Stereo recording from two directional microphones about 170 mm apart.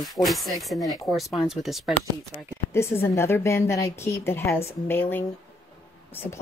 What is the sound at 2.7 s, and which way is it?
A woman's voice, 15° left (ahead or behind).